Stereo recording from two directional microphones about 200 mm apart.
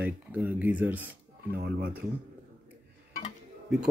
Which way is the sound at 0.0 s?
10° right (ahead or behind).